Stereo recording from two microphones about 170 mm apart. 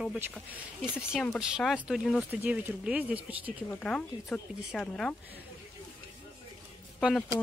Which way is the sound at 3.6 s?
5° left (ahead or behind).